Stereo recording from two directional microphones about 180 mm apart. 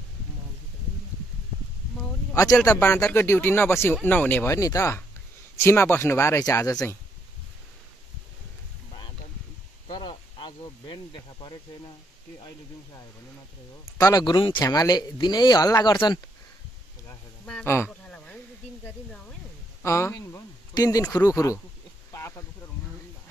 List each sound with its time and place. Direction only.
2.6 s speech: 15° left (ahead or behind)
9.8 s speech: 25° left (ahead or behind)
13.9 s speech: 20° left (ahead or behind)
17.6 s a sound: 10° left (ahead or behind)
19.8 s speech: 15° left (ahead or behind)
22.1 s a sound: 15° left (ahead or behind)